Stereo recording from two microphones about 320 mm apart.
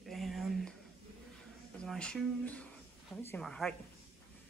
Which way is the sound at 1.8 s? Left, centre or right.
Centre.